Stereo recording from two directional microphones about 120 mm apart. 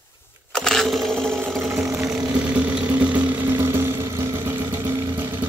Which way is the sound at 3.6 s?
20° right (ahead or behind).